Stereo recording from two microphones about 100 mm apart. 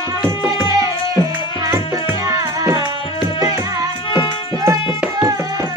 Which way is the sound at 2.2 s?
35° right (ahead or behind).